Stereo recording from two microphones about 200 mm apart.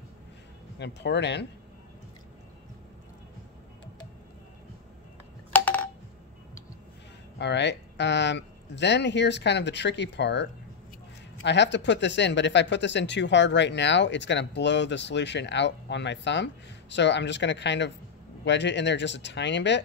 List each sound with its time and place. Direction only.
0.7 s speech: 60° left (ahead or behind)
5.5 s telephone dialing: 10° left (ahead or behind)
7.3 s speech: 60° left (ahead or behind)